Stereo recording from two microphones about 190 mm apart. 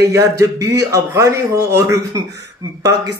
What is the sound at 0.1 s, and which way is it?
Speech, 15° right (ahead or behind).